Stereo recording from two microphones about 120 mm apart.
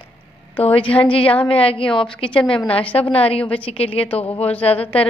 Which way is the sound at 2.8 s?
10° left (ahead or behind).